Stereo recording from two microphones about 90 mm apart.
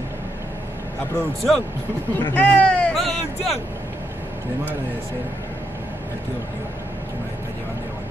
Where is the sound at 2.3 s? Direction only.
20° left (ahead or behind).